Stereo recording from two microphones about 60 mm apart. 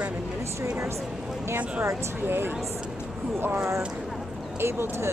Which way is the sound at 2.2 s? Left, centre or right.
Right.